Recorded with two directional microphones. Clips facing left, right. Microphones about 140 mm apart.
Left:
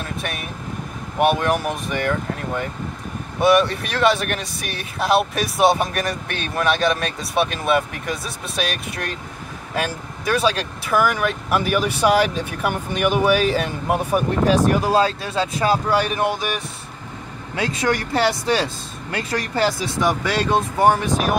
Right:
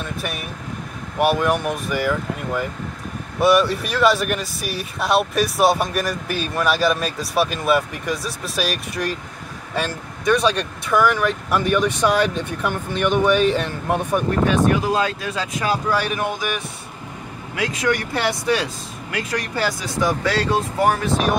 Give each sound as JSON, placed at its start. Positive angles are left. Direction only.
{"t": 0.0, "sound": "air conditioning", "side_deg": 0}
{"t": 1.2, "sound": "speech", "side_deg": 0}
{"t": 14.4, "sound": "speech", "side_deg": 35}
{"t": 17.6, "sound": "speech", "side_deg": 30}